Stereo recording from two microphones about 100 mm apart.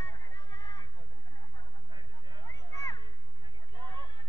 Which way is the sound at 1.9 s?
45° right (ahead or behind).